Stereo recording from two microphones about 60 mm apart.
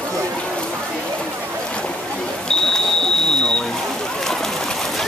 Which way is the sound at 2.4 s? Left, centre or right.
Centre.